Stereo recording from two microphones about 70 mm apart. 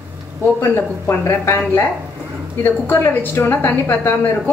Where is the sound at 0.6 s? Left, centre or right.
Left.